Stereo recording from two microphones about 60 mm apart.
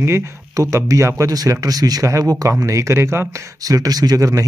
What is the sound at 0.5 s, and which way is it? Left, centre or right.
Speech, right.